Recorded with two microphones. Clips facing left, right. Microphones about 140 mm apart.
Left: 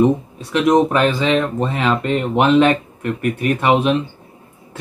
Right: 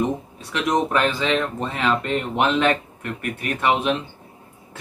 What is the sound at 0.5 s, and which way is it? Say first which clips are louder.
Speech: left 7 dB; 15° left (ahead or behind).